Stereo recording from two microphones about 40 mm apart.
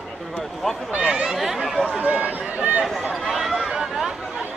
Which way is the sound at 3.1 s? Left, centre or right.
Centre.